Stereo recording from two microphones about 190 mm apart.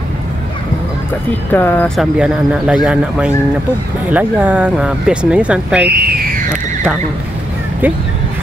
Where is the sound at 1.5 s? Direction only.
10° left (ahead or behind).